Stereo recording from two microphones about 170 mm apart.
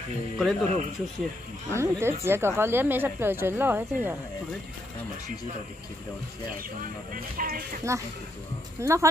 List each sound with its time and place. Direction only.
0.4 s speech: centre (ahead or behind)
1.7 s speech: 15° right (ahead or behind)
7.2 s music: 55° right (ahead or behind)
8.8 s speech: 15° right (ahead or behind)